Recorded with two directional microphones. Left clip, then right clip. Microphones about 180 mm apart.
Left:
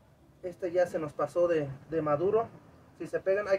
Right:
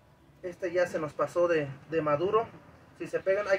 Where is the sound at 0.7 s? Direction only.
5° left (ahead or behind).